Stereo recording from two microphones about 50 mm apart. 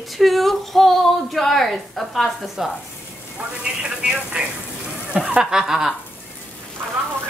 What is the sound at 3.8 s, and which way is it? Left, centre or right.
Speech, centre.